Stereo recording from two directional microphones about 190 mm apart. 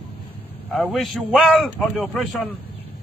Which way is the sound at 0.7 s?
Centre (ahead or behind).